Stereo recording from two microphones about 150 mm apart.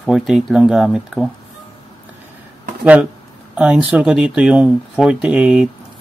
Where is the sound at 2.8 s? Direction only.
10° right (ahead or behind).